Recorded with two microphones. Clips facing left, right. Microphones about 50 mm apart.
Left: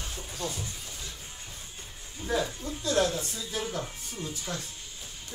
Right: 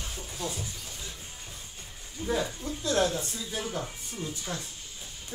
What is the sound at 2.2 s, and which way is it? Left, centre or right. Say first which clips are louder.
Speech: even; centre.